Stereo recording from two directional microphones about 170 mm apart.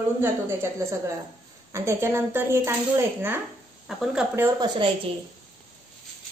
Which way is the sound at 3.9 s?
Centre (ahead or behind).